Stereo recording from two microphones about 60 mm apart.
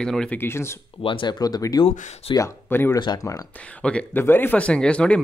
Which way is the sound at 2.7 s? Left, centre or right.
Left.